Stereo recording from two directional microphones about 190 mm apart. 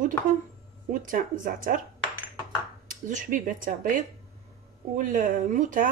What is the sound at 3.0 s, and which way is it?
A man's voice, 45° right (ahead or behind).